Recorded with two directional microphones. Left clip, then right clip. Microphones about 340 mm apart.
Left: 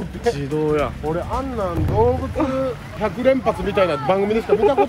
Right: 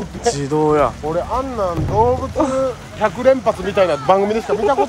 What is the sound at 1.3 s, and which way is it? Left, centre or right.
Speech, right.